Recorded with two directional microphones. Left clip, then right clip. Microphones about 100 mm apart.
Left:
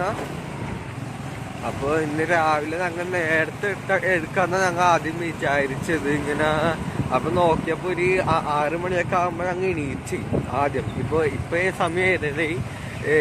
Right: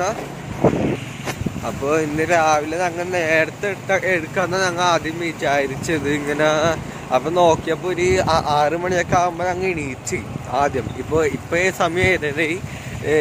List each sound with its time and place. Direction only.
1.9 s speech: 35° right (ahead or behind)
4.4 s speech: 15° right (ahead or behind)
5.2 s speech: 30° right (ahead or behind)
6.3 s speech: 45° right (ahead or behind)
8.9 s speech: 15° right (ahead or behind)
10.5 s speech: 45° right (ahead or behind)